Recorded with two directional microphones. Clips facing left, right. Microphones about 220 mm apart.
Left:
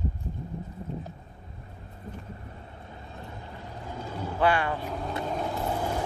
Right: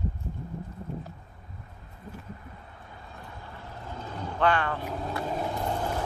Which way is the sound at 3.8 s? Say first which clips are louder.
Left 2 dB; 10° left (ahead or behind).